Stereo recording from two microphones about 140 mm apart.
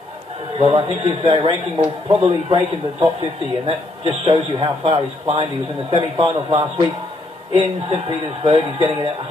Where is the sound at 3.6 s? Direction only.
45° right (ahead or behind).